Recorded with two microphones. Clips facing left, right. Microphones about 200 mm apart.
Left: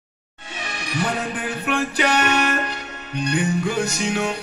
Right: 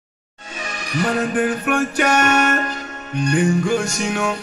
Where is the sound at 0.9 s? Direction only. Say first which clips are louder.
Right 6 dB; 45° right (ahead or behind).